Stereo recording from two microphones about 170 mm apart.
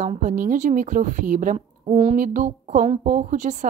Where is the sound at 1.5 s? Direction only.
35° right (ahead or behind).